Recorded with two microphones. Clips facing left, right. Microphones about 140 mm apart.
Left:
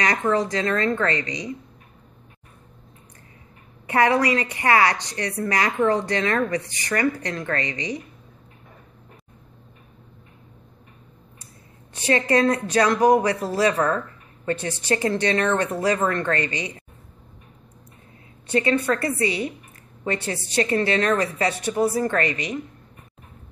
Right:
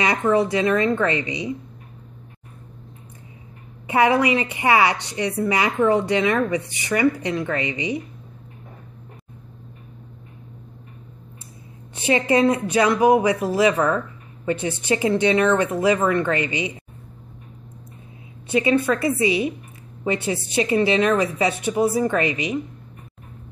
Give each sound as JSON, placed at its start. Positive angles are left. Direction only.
{"t": 0.0, "sound": "speech", "side_deg": -10}
{"t": 3.8, "sound": "speech", "side_deg": -20}
{"t": 12.1, "sound": "speech", "side_deg": -15}
{"t": 18.9, "sound": "a woman's voice", "side_deg": -20}
{"t": 21.5, "sound": "a woman's voice", "side_deg": -20}